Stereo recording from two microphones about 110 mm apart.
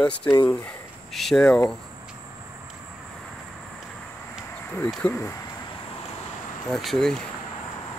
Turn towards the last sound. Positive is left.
turn(degrees=5)  # may be behind; listen again after turning